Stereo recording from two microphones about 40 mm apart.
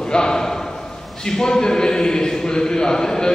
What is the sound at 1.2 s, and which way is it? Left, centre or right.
A man's voice, centre.